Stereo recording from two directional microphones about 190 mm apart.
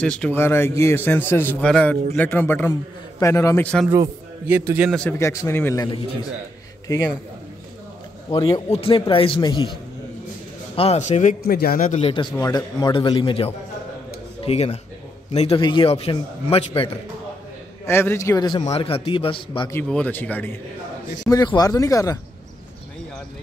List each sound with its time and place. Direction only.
0.0 s a man's voice: 5° left (ahead or behind)
3.9 s a man's voice: 15° right (ahead or behind)
5.2 s a man's voice: 15° left (ahead or behind)
8.3 s a man's voice: 25° left (ahead or behind)
10.8 s a man's voice: 35° left (ahead or behind)
12.0 s a man's voice: 25° left (ahead or behind)
12.4 s a man's voice: 15° left (ahead or behind)
17.8 s a man's voice: 10° left (ahead or behind)
18.6 s a man's voice: 30° left (ahead or behind)
19.7 s a man's voice: 5° left (ahead or behind)
21.3 s a man's voice: 20° left (ahead or behind)